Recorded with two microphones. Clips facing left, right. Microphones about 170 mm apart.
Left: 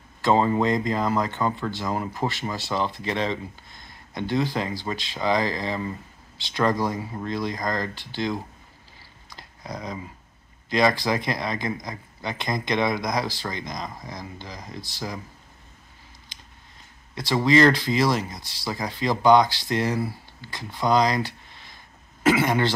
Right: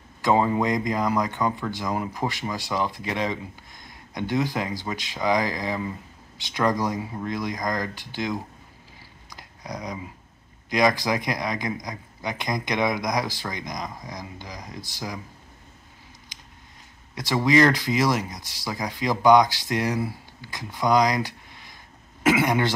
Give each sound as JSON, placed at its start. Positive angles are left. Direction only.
{"t": 0.2, "sound": "speech", "side_deg": -10}
{"t": 9.4, "sound": "a sound", "side_deg": -15}
{"t": 10.7, "sound": "speech", "side_deg": -15}
{"t": 17.1, "sound": "speech", "side_deg": -15}